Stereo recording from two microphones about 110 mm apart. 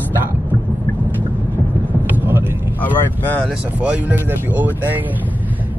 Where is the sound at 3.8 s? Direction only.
10° right (ahead or behind).